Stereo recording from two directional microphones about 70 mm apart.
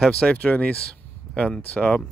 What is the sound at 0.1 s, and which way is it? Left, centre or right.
Speech, centre.